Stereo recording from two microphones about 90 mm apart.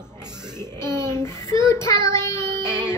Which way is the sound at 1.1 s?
30° left (ahead or behind).